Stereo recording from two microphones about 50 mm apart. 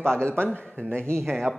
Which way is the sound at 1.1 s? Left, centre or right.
Right.